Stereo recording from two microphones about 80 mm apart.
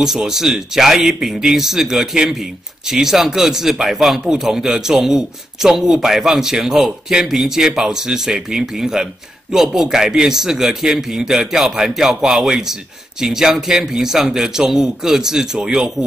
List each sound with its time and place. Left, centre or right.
0.0 s a man's voice: centre